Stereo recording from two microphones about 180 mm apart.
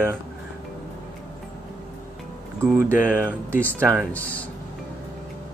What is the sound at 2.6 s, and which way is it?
Speech, 15° right (ahead or behind).